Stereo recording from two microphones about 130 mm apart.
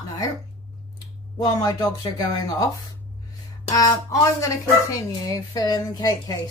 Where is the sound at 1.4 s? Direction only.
30° left (ahead or behind).